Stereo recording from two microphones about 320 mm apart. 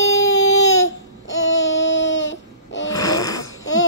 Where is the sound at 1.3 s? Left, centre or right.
Left.